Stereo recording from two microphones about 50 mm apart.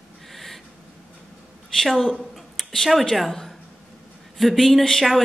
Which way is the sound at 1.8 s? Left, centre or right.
Centre.